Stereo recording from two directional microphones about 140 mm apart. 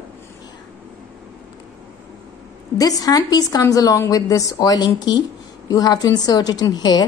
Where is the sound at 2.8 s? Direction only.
25° left (ahead or behind).